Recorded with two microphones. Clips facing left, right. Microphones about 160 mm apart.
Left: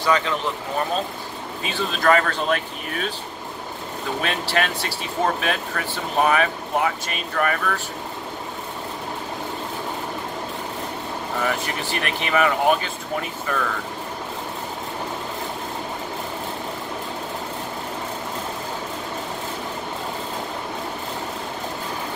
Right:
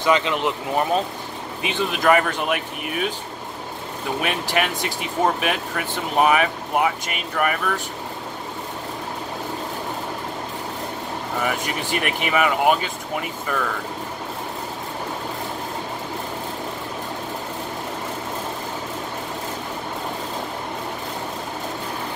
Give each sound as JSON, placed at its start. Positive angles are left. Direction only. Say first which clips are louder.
{"t": 0.0, "sound": "speech", "louder": "right 2 dB", "side_deg": -20}
{"t": 4.2, "sound": "speech", "louder": "right 1 dB", "side_deg": -15}
{"t": 11.4, "sound": "speech", "louder": "even", "side_deg": -15}